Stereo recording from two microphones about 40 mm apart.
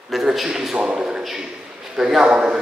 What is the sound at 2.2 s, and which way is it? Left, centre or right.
Speech, right.